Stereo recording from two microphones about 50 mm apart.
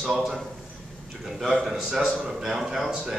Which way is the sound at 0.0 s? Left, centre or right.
Centre.